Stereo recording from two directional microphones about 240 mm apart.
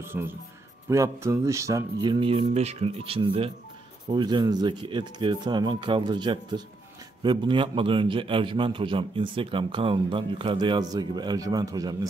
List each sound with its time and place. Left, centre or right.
0.0 s a man's voice: centre